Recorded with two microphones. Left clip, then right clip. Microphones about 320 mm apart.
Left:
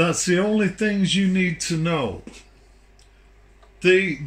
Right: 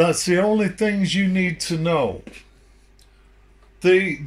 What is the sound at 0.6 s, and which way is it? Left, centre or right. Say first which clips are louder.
Speech: right 1 dB; centre.